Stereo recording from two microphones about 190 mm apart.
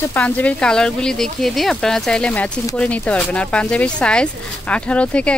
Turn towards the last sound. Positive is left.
turn(degrees=5)  # may be behind; listen again after turning